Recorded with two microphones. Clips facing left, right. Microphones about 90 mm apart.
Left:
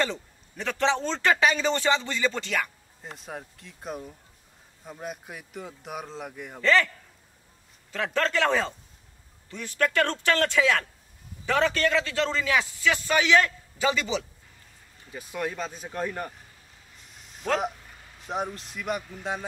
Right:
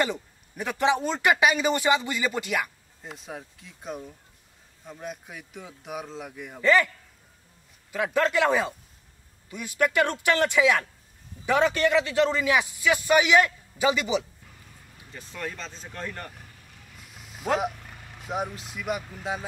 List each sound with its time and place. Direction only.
0.0 s a man's voice: 15° right (ahead or behind)
3.0 s a man's voice: centre (ahead or behind)
6.6 s a man's voice: 15° right (ahead or behind)
7.9 s a man's voice: 10° right (ahead or behind)
15.1 s speech: 10° left (ahead or behind)
16.7 s music: 60° right (ahead or behind)
17.4 s speech: 5° right (ahead or behind)
17.6 s vehicle: 60° right (ahead or behind)
18.3 s a man's voice: 5° right (ahead or behind)